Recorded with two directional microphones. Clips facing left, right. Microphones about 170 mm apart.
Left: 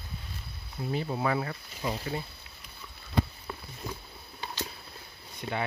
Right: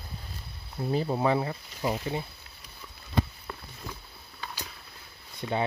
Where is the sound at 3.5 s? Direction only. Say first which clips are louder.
Left 1 dB; 5° left (ahead or behind).